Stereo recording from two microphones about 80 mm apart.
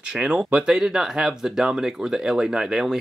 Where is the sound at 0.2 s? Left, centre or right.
Centre.